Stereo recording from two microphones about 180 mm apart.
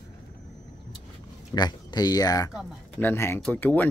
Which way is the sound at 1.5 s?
20° left (ahead or behind).